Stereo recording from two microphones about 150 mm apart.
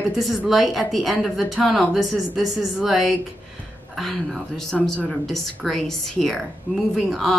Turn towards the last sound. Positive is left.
turn(degrees=0)  # may be behind; listen again after turning